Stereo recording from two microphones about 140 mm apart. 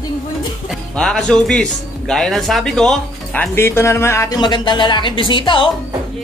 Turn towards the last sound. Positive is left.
turn(degrees=35)  # may be behind; listen again after turning